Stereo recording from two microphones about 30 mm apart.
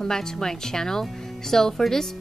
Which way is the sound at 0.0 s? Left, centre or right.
Centre.